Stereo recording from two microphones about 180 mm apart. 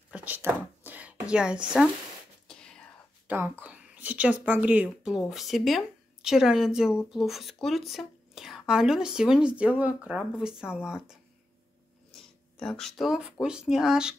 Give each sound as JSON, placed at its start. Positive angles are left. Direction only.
{"t": 0.1, "sound": "a sound", "side_deg": -10}
{"t": 2.4, "sound": "whispering", "side_deg": 5}
{"t": 3.3, "sound": "speech", "side_deg": -10}
{"t": 12.5, "sound": "speech", "side_deg": 5}